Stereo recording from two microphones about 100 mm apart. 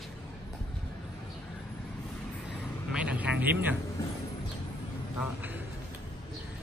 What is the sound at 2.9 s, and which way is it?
Speech, 10° right (ahead or behind).